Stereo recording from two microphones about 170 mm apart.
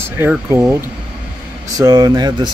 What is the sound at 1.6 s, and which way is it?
Speech, 20° right (ahead or behind).